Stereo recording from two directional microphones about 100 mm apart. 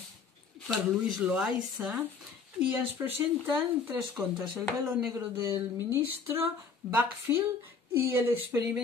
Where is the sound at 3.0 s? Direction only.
30° right (ahead or behind).